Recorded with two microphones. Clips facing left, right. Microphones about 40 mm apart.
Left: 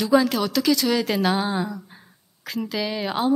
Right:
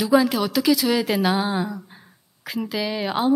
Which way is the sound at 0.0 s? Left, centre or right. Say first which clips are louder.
Right 1 dB; centre.